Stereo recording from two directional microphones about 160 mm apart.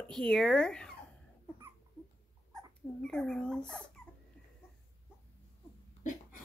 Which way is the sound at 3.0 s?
5° left (ahead or behind).